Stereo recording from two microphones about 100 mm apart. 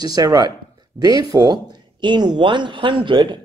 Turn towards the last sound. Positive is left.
turn(degrees=-55)  # may be behind; listen again after turning